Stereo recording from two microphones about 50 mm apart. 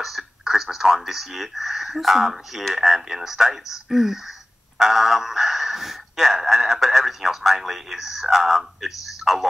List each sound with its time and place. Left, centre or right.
0.0 s speech: centre